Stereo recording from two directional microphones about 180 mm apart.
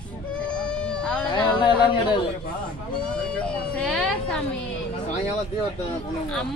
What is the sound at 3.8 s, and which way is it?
Speech, 5° left (ahead or behind).